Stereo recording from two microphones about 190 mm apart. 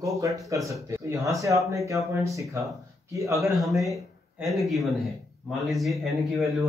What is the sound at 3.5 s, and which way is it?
Speech, centre (ahead or behind).